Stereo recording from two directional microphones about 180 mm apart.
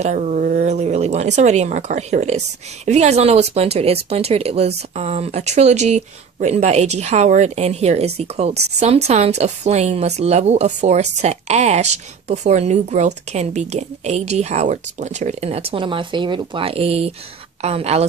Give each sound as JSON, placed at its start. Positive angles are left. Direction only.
{"t": 0.0, "sound": "speech", "side_deg": -40}